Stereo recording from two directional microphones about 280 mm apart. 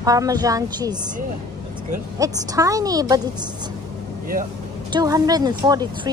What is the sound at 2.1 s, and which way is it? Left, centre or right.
Speech, centre.